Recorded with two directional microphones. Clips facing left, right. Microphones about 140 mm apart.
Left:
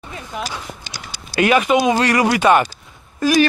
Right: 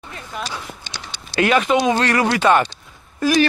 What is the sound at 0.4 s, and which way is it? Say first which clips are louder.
Speech: left 1 dB; 10° left (ahead or behind).